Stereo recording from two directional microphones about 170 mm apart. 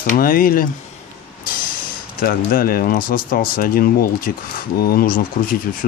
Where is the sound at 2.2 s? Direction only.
60° left (ahead or behind).